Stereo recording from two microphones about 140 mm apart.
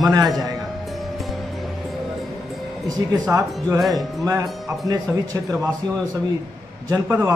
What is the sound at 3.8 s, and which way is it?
Speech, centre (ahead or behind).